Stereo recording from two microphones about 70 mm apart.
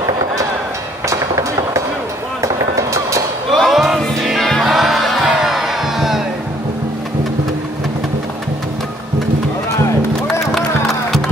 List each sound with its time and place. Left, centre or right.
1.0 s music: right
3.5 s music: centre
4.3 s choir: centre
5.3 s music: centre
10.5 s a sound: centre